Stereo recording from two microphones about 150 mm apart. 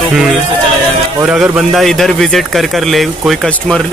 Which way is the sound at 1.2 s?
5° right (ahead or behind).